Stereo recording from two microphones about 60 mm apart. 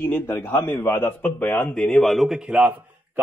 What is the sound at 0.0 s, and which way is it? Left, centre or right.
Speech, left.